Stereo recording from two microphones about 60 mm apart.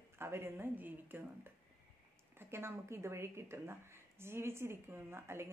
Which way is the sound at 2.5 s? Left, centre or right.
Right.